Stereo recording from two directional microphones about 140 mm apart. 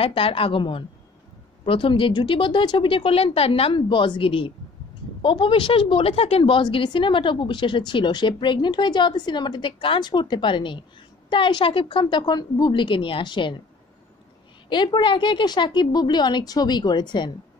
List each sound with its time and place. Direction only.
0.0 s a woman's voice: 40° left (ahead or behind)
14.7 s a woman's voice: 35° left (ahead or behind)